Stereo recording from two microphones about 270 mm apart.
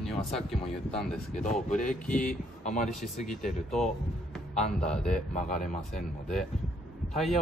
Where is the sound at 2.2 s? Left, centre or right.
Left.